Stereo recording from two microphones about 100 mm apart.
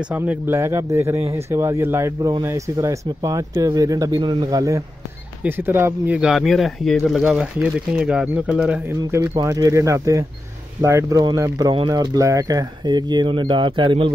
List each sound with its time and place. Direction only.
0.0 s speech: 15° right (ahead or behind)
0.6 s speech: 25° right (ahead or behind)
4.2 s speech: 55° right (ahead or behind)
4.5 s speech: 35° right (ahead or behind)
5.4 s speech: 20° right (ahead or behind)
6.1 s speech: 5° right (ahead or behind)
7.2 s speech: 10° right (ahead or behind)
9.2 s speech: 35° right (ahead or behind); by 13.9 s 55° right (ahead or behind)